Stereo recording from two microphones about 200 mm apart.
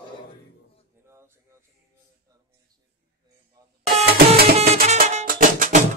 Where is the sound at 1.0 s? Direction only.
15° right (ahead or behind).